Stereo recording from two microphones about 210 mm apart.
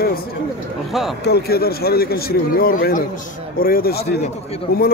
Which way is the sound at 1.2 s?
50° left (ahead or behind).